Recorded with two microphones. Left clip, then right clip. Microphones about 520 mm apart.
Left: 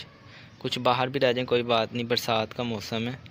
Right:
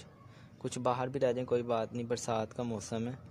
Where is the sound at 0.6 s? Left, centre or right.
Right.